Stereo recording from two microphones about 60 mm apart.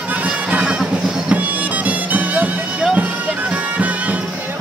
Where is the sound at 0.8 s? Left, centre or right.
Centre.